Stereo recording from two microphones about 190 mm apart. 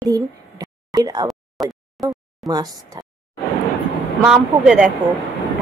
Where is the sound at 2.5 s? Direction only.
20° right (ahead or behind).